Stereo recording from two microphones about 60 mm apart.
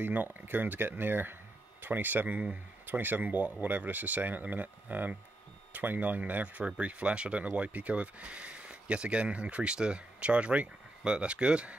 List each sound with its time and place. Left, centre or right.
0.0 s speech: right; by 11.7 s centre